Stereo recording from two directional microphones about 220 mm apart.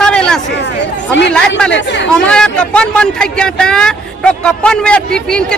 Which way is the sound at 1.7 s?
55° left (ahead or behind).